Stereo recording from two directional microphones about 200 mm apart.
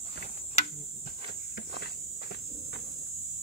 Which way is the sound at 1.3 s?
50° left (ahead or behind).